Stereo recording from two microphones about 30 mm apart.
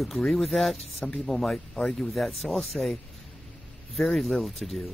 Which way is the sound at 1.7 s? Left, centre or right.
Left.